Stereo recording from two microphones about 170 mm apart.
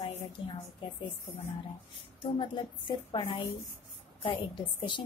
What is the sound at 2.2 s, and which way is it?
A woman's voice, 30° left (ahead or behind).